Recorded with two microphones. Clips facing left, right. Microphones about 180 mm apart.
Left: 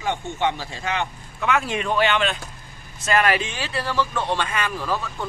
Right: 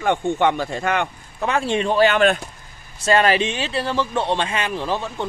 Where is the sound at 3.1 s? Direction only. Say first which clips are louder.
Right 4 dB; 30° right (ahead or behind).